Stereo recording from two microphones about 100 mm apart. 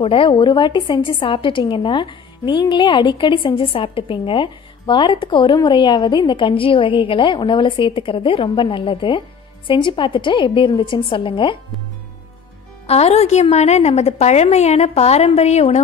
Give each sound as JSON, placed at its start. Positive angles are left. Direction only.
{"t": 0.0, "sound": "a woman's voice", "side_deg": 60}
{"t": 12.8, "sound": "a woman's voice", "side_deg": 90}